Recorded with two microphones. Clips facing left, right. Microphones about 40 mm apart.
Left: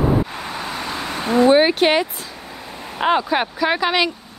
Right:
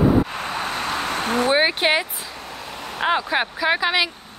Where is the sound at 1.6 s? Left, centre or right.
Centre.